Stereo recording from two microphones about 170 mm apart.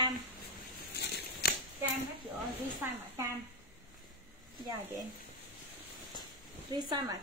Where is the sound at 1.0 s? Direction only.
70° left (ahead or behind).